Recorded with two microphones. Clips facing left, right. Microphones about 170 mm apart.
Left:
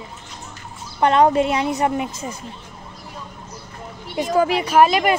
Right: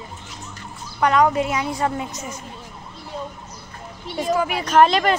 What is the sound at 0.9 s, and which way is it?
Speech, 25° left (ahead or behind).